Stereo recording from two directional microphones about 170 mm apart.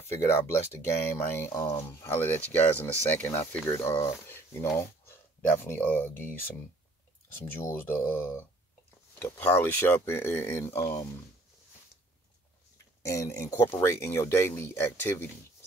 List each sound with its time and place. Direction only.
0.3 s speech: 15° left (ahead or behind)
13.0 s speech: 15° left (ahead or behind)